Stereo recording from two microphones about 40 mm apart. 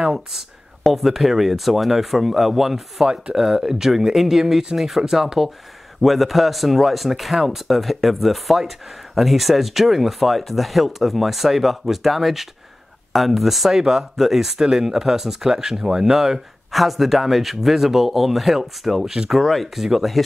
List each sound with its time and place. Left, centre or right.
0.0 s speech: centre